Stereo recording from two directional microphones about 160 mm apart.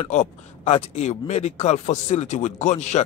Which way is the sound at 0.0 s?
45° left (ahead or behind).